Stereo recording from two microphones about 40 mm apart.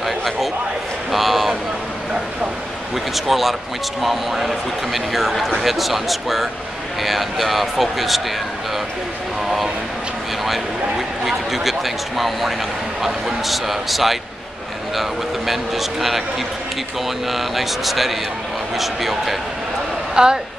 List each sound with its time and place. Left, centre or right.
0.0 s a sound: centre
3.3 s a man's voice: centre
11.2 s a man's voice: centre
17.3 s a man's voice: centre
20.2 s speech: right